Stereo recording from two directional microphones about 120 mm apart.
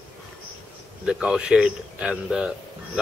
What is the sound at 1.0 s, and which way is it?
Speech, 5° right (ahead or behind).